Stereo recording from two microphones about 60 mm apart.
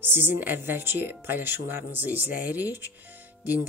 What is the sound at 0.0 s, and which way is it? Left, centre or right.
Speech, right.